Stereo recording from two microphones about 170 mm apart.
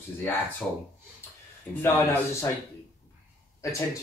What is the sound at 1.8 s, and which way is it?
Speech, 15° left (ahead or behind).